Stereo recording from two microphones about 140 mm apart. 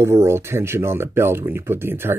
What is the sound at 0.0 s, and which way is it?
Speech, 20° right (ahead or behind).